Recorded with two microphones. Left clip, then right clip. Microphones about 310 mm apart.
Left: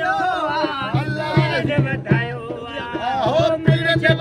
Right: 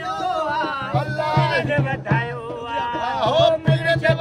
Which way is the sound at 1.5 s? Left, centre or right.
Right.